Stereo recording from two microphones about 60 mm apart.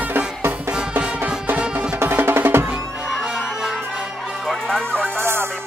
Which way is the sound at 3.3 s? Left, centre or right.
Centre.